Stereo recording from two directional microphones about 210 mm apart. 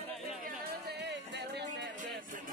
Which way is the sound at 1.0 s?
55° right (ahead or behind).